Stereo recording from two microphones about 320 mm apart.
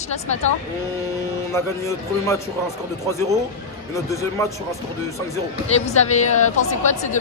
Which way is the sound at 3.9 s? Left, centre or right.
Centre.